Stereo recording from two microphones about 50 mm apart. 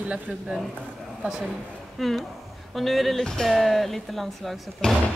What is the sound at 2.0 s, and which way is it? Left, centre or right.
Speech, centre.